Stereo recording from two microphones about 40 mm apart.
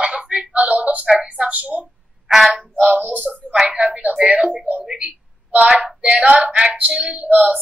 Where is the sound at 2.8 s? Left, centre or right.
Right.